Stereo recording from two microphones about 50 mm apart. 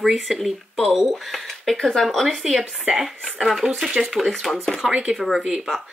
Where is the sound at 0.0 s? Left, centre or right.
Centre.